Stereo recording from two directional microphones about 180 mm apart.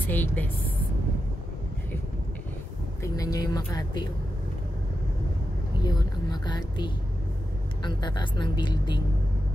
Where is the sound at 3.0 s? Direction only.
20° left (ahead or behind).